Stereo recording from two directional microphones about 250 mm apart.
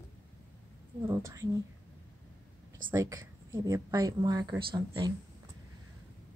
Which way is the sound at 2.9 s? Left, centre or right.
Centre.